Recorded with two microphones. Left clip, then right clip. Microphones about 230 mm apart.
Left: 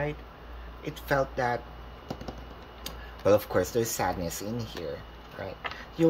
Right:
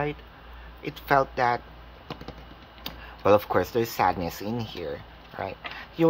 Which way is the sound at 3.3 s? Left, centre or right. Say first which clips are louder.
Right 3 dB; centre.